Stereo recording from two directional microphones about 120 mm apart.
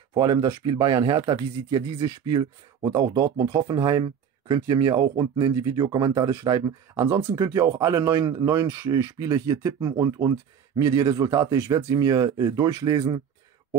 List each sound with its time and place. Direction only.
0.1 s speech: 35° right (ahead or behind)
11.5 s speech: 20° right (ahead or behind); by 13.2 s 40° right (ahead or behind)